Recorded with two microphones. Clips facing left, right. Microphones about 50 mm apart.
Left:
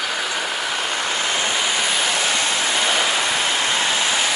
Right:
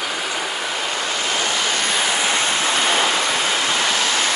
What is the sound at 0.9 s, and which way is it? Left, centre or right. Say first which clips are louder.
Vehicle: even; left.